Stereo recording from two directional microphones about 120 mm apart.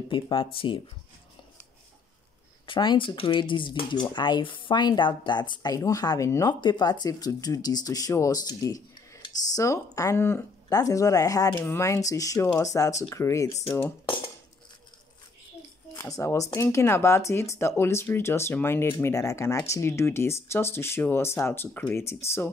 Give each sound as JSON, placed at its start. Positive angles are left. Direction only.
{"t": 0.1, "sound": "speech", "side_deg": 45}
{"t": 2.6, "sound": "speech", "side_deg": 40}
{"t": 16.0, "sound": "speech", "side_deg": 25}